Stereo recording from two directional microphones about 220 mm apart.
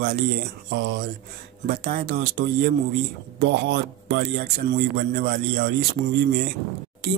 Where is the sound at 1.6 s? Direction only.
45° right (ahead or behind).